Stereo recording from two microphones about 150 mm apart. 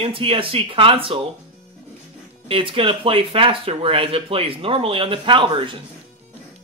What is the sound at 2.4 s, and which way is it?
Speech, 35° right (ahead or behind).